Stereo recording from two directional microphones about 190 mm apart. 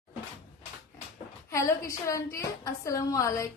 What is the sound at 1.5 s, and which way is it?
A woman's voice, 15° left (ahead or behind).